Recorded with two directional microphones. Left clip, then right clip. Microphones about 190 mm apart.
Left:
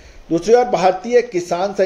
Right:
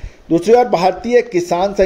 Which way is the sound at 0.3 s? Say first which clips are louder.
Right 2 dB; 35° right (ahead or behind).